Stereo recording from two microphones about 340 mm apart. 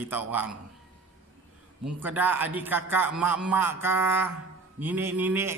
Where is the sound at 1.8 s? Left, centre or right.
Centre.